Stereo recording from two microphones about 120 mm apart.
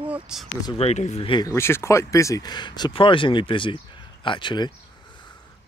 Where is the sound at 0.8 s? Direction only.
70° left (ahead or behind).